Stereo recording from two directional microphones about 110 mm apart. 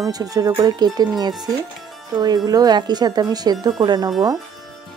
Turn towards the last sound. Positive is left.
turn(degrees=-35)  # may be behind; listen again after turning